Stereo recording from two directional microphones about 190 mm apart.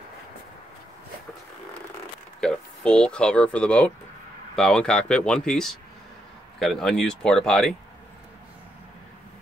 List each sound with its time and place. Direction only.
2.4 s speech: 5° left (ahead or behind)